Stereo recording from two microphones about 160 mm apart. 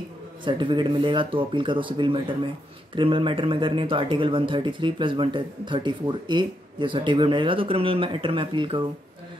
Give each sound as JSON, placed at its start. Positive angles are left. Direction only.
{"t": 0.5, "sound": "speech", "side_deg": -30}